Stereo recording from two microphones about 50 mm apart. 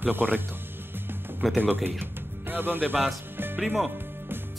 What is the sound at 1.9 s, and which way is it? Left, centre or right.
Speech, right.